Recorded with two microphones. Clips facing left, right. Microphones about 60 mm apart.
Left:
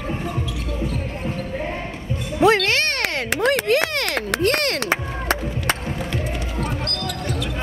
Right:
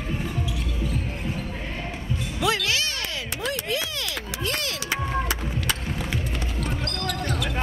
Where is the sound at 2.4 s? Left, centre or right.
Left.